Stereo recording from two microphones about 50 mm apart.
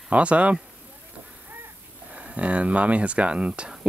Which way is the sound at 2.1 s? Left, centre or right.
Right.